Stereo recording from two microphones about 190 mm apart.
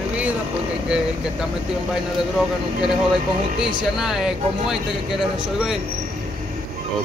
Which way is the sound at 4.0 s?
5° right (ahead or behind).